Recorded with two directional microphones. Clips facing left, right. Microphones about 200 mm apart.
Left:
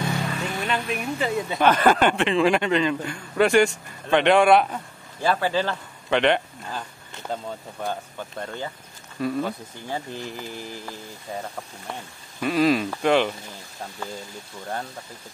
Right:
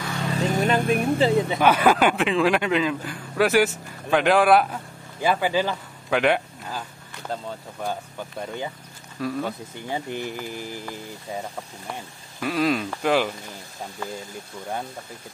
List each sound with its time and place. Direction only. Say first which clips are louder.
0.3 s vehicle: right 5 dB; 40° right (ahead or behind)
1.0 s speech: right 6 dB; 30° right (ahead or behind)
1.6 s a man's voice: left 2 dB; 10° right (ahead or behind)
9.2 s a man's voice: left 2 dB; centre (ahead or behind)
9.8 s speech: right 2 dB; 15° right (ahead or behind)
11.9 s a man's voice: even; centre (ahead or behind)